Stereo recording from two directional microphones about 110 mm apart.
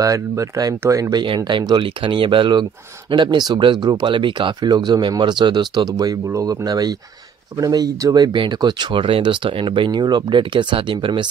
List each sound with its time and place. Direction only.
0.0 s speech: 30° right (ahead or behind)
1.2 s speech: 50° right (ahead or behind)